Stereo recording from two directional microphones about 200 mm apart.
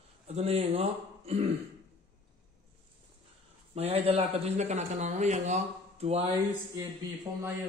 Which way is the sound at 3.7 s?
30° right (ahead or behind).